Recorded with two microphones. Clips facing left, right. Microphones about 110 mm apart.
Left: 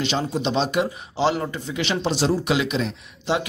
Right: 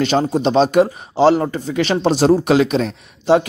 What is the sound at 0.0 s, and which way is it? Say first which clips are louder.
A man's voice: right 8 dB; 45° right (ahead or behind).